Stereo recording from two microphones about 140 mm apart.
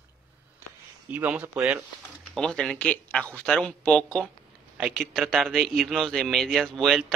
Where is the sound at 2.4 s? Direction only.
5° left (ahead or behind).